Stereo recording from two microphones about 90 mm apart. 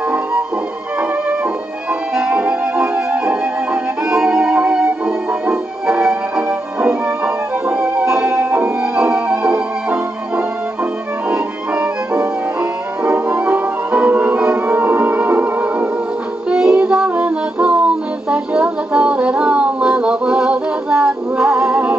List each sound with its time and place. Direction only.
2.1 s music: 15° right (ahead or behind)
8.5 s music: 20° right (ahead or behind)